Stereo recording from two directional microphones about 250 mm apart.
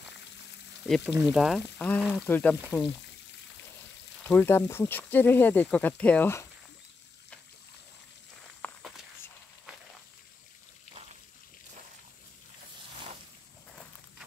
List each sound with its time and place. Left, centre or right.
0.8 s speech: centre
4.2 s speech: centre
8.6 s walk: centre